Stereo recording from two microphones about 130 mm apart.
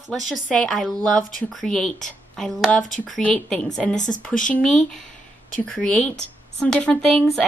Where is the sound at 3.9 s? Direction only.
70° left (ahead or behind).